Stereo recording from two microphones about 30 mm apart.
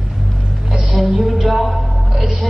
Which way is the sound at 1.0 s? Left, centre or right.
Right.